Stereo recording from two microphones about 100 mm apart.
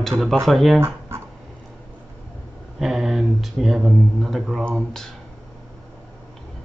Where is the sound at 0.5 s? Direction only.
Centre (ahead or behind).